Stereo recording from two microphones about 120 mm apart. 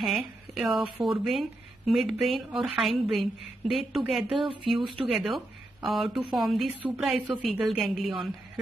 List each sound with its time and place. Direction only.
0.0 s a woman's voice: centre (ahead or behind)